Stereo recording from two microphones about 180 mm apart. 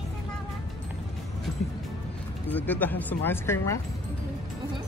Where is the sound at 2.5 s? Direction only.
10° left (ahead or behind).